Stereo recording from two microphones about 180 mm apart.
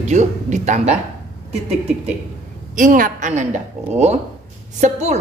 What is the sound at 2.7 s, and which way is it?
A woman's voice, 50° right (ahead or behind).